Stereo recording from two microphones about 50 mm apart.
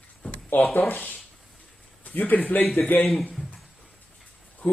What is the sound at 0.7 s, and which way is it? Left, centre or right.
Speech, left.